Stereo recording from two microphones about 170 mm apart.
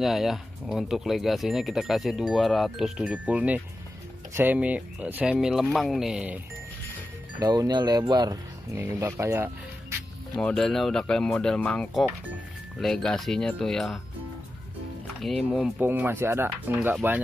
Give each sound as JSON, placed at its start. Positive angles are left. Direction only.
{"t": 0.0, "sound": "speech", "side_deg": 0}
{"t": 7.3, "sound": "speech", "side_deg": -25}
{"t": 10.3, "sound": "speech", "side_deg": 5}
{"t": 15.2, "sound": "speech", "side_deg": 0}
{"t": 15.8, "sound": "speech", "side_deg": -10}